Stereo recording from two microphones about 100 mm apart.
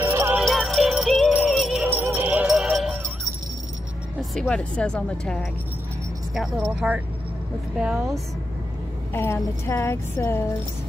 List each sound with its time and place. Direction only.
0.0 s music: 25° right (ahead or behind)
0.5 s music: centre (ahead or behind)
1.4 s jingle bell: centre (ahead or behind)
2.0 s music: 20° right (ahead or behind)
2.5 s music: 5° right (ahead or behind)
4.2 s speech: 5° left (ahead or behind)
6.3 s speech: 5° right (ahead or behind)
9.1 s a woman's voice: 25° left (ahead or behind)